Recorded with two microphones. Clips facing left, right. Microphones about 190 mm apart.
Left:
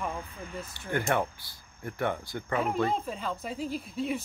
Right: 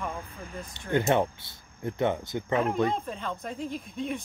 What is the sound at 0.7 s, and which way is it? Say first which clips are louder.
Speech: right 5 dB; 20° right (ahead or behind).